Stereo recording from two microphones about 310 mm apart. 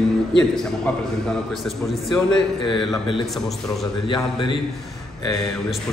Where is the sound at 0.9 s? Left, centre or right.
Centre.